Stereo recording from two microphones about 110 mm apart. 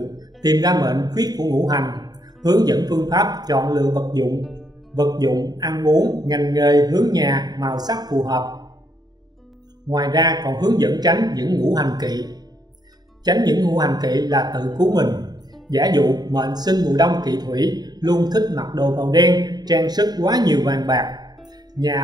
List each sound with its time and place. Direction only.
0.0 s speech: 35° right (ahead or behind)
9.8 s speech: 35° right (ahead or behind)